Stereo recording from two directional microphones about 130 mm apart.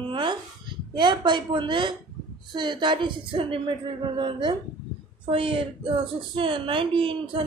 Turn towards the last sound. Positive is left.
turn(degrees=-40)  # may be behind; listen again after turning